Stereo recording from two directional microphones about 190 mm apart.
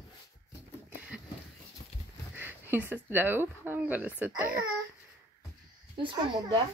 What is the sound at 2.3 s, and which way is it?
Speech, 10° right (ahead or behind).